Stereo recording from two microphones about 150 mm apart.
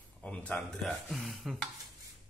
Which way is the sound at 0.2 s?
10° left (ahead or behind).